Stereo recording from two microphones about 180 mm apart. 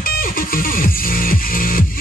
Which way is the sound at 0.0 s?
50° left (ahead or behind).